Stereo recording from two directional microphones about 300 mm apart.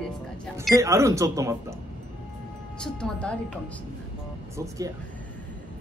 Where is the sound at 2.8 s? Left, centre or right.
Centre.